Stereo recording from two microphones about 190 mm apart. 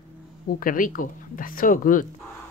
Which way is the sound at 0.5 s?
50° left (ahead or behind).